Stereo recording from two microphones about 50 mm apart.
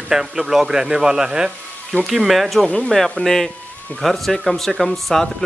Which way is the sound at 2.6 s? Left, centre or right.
Centre.